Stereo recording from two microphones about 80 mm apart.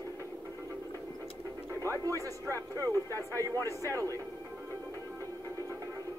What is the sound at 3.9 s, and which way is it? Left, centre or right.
Speech, right.